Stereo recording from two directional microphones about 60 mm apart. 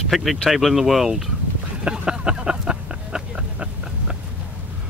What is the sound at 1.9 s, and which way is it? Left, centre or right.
Vehicle, centre.